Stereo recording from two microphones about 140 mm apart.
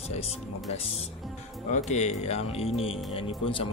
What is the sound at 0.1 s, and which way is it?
Speech, 45° left (ahead or behind).